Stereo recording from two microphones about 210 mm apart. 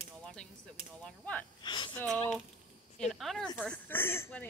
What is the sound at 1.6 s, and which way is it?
Speech, 20° left (ahead or behind).